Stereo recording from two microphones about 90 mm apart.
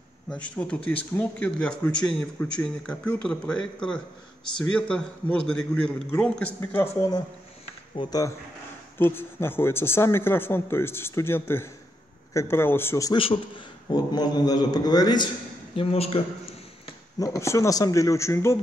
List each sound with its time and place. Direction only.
0.3 s speech: 10° left (ahead or behind)
6.6 s speech: 25° left (ahead or behind)
7.0 s a man's voice: 50° left (ahead or behind)
8.0 s speech: 65° left (ahead or behind)
8.9 s speech: 25° left (ahead or behind)
13.1 s a man's voice: 75° left (ahead or behind)
13.8 s a man's voice: 50° left (ahead or behind)
15.7 s a man's voice: 90° left
17.2 s speech: 35° left (ahead or behind)